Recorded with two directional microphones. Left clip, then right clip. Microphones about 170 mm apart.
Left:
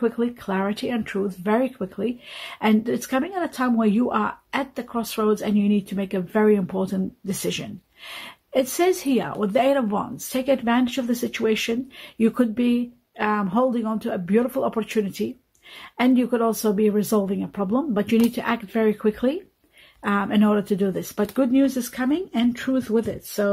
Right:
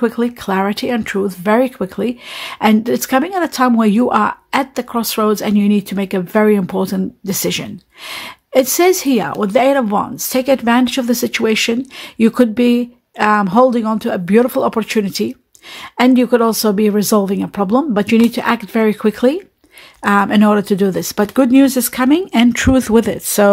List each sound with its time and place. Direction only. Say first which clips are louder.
0.0 s speech: right 7 dB; 30° right (ahead or behind)